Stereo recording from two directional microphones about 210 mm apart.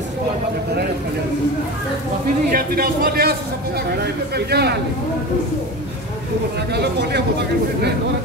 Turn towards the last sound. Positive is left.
turn(degrees=-55)  # may be behind; listen again after turning